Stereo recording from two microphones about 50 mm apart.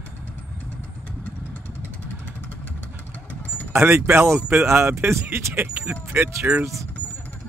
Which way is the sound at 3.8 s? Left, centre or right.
Right.